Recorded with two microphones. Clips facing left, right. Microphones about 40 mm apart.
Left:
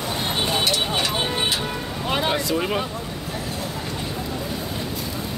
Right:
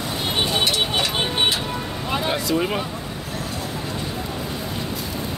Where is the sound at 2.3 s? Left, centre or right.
Centre.